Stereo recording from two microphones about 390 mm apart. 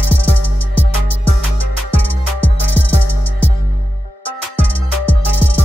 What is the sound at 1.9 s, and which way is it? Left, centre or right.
Music, right.